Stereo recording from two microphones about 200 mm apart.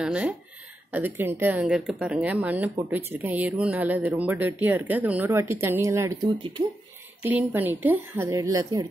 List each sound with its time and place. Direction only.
0.0 s speech: 5° right (ahead or behind)
6.4 s speech: 25° right (ahead or behind)
7.2 s speech: 10° right (ahead or behind)